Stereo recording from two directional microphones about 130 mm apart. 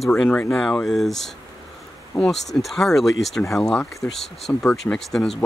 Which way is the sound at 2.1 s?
25° left (ahead or behind).